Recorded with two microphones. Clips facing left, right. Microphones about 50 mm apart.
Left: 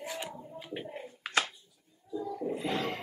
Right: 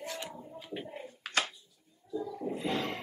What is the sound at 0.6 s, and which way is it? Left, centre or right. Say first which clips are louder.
Bird: left 1 dB; centre.